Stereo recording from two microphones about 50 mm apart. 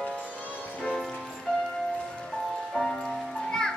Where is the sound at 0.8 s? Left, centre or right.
Centre.